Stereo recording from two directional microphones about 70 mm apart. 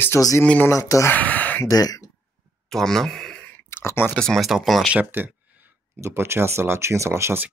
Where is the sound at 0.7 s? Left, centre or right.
Left.